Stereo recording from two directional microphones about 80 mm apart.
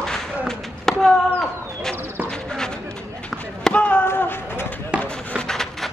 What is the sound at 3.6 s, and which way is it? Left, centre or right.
Chop, centre.